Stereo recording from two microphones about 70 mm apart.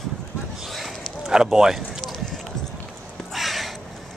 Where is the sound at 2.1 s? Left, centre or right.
Centre.